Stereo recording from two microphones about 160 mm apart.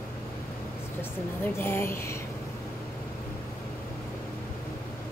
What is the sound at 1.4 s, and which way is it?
Speech, 15° left (ahead or behind).